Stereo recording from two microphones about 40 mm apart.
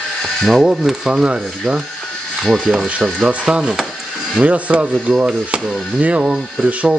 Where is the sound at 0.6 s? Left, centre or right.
Centre.